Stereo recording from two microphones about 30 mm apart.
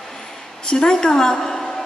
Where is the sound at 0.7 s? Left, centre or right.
Left.